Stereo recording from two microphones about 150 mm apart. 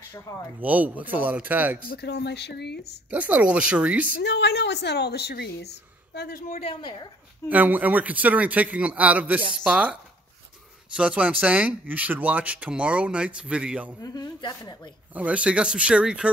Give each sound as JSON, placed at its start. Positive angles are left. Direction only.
{"t": 0.1, "sound": "a woman's voice", "side_deg": 20}
{"t": 0.6, "sound": "speech", "side_deg": -10}
{"t": 1.9, "sound": "a woman's voice", "side_deg": 90}
{"t": 3.1, "sound": "speech", "side_deg": -10}
{"t": 4.5, "sound": "a woman's voice", "side_deg": 90}
{"t": 6.5, "sound": "speech", "side_deg": 40}
{"t": 6.8, "sound": "a woman's voice", "side_deg": 30}
{"t": 7.4, "sound": "speech", "side_deg": -10}
{"t": 11.0, "sound": "speech", "side_deg": -10}
{"t": 14.0, "sound": "a woman's voice", "side_deg": 25}
{"t": 15.1, "sound": "speech", "side_deg": -10}